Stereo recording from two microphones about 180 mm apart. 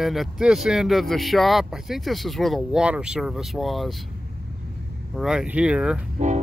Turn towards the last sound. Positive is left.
turn(degrees=-5)  # may be behind; listen again after turning